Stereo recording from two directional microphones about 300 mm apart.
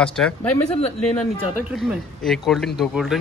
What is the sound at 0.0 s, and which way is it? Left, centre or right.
Speech, centre.